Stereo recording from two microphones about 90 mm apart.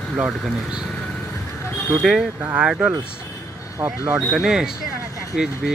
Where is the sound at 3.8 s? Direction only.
20° right (ahead or behind).